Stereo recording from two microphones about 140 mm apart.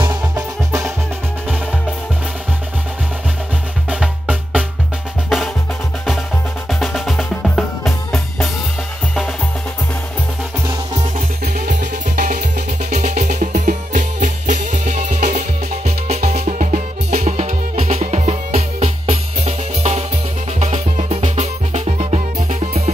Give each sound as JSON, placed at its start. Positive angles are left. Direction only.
{"t": 0.7, "sound": "music", "side_deg": -20}
{"t": 3.9, "sound": "music", "side_deg": -5}
{"t": 6.7, "sound": "music", "side_deg": 0}
{"t": 11.1, "sound": "music", "side_deg": -70}
{"t": 17.1, "sound": "music", "side_deg": -55}